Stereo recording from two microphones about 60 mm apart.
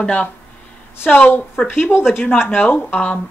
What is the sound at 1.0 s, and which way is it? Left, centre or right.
A woman's voice, left.